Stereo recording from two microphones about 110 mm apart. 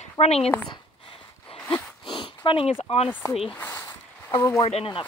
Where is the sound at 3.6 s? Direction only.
30° left (ahead or behind).